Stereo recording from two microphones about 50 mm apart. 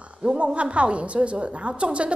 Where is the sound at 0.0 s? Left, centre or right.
Right.